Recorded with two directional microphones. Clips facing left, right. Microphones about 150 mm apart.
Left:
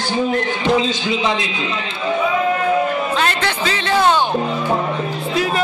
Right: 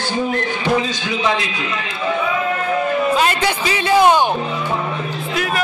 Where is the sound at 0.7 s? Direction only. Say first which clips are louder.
Left 2 dB; 20° left (ahead or behind).